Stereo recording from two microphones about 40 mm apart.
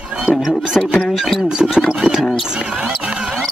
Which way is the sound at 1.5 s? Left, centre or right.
Centre.